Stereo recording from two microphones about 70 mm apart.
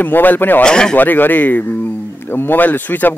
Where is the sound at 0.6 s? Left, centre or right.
Centre.